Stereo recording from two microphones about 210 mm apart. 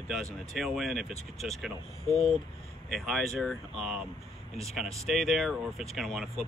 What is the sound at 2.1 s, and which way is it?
Speech, 30° left (ahead or behind).